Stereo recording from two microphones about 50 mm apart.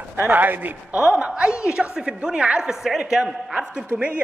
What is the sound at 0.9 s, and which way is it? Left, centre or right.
A woman's voice, right.